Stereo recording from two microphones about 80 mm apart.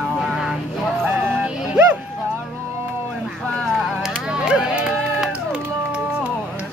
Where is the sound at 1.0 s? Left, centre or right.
Centre.